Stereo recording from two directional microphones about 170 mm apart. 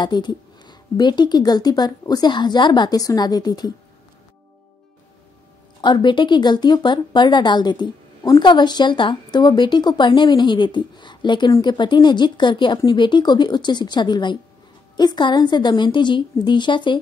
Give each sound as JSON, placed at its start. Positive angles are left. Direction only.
{"t": 0.0, "sound": "speech", "side_deg": 25}
{"t": 5.8, "sound": "speech", "side_deg": 25}